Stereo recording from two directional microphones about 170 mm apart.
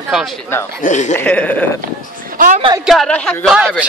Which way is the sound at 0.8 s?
45° left (ahead or behind).